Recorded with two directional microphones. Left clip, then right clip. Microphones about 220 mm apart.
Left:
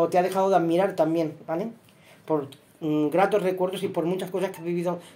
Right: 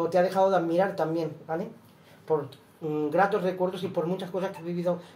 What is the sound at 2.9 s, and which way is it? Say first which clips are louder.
Speech: left 3 dB; 50° left (ahead or behind).